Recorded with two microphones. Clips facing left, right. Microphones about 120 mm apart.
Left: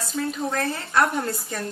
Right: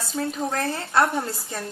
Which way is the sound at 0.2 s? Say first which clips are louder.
Even; 25° right (ahead or behind).